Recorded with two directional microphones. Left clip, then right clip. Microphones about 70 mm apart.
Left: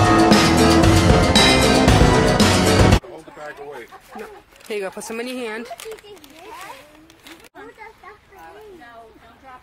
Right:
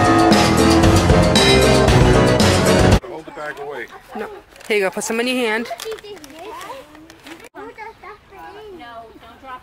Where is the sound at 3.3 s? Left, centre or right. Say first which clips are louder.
Right 6 dB; right.